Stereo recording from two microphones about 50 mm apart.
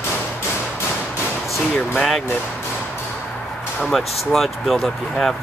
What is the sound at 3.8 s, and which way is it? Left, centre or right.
Speech, centre.